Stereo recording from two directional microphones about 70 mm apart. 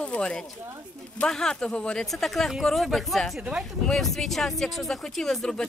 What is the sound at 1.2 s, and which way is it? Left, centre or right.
Speech, centre.